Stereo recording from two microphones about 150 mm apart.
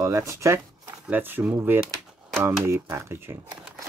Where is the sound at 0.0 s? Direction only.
20° right (ahead or behind).